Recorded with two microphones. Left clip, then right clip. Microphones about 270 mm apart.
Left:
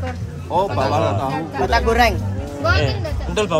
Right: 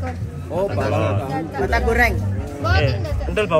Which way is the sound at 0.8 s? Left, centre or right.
Left.